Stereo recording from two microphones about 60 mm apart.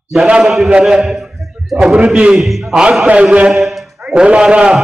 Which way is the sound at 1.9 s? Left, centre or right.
Centre.